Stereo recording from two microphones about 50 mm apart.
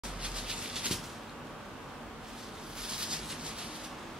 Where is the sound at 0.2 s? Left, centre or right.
Centre.